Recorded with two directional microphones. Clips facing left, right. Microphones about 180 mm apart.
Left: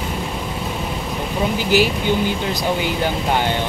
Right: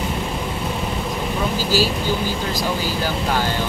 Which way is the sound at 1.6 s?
20° left (ahead or behind).